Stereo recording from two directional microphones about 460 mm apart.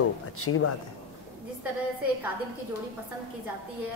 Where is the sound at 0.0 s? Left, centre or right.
Left.